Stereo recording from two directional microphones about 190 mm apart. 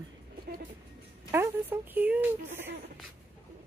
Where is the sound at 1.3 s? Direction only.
10° right (ahead or behind).